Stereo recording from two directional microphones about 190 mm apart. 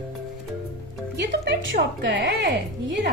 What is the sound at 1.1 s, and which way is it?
A woman's voice, 65° right (ahead or behind).